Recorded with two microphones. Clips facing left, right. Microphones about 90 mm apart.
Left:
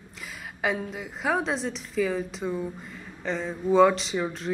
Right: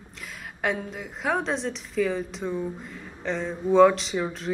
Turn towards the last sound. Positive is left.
turn(degrees=0)  # may be behind; listen again after turning